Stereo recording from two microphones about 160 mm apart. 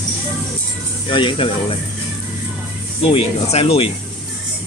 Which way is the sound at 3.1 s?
40° left (ahead or behind).